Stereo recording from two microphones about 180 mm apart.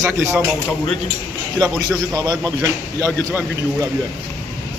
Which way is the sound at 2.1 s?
20° right (ahead or behind).